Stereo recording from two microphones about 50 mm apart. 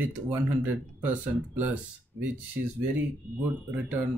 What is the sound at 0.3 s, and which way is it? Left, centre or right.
Speech, right.